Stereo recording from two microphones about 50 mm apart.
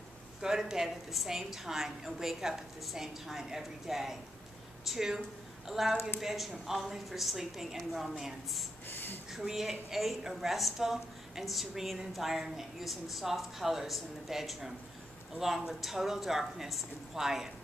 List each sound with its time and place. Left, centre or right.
0.4 s a woman's voice: centre
8.8 s speech: left
9.3 s a woman's voice: centre